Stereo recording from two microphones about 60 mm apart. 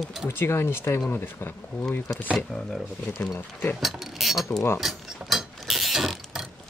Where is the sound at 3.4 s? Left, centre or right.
Left.